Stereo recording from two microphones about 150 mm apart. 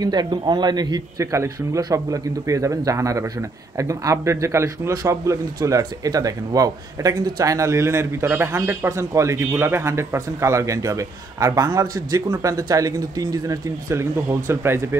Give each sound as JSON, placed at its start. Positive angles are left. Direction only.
{"t": 0.0, "sound": "a man's voice", "side_deg": -30}